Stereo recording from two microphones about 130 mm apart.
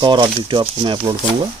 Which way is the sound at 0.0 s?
35° right (ahead or behind).